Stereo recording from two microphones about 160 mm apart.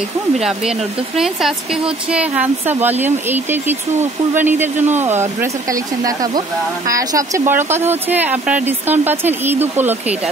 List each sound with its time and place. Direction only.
0.4 s speech: 5° right (ahead or behind)